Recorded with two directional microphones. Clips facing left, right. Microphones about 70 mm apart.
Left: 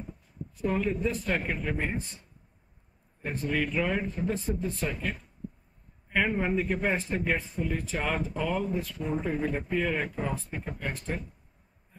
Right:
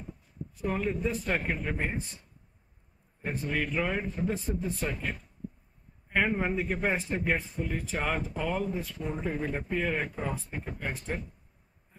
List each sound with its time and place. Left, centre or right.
0.7 s a man's voice: centre
3.3 s a man's voice: centre